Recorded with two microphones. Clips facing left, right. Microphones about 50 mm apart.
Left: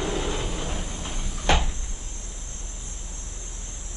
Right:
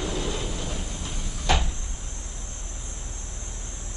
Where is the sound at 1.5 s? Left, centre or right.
Left.